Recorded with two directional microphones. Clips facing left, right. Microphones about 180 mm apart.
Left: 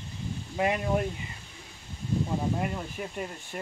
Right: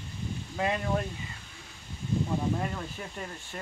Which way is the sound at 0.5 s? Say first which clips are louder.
Left 3 dB; 15° left (ahead or behind).